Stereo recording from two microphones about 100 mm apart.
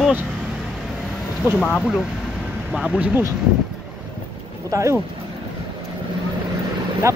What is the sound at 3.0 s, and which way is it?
Speech, 15° right (ahead or behind).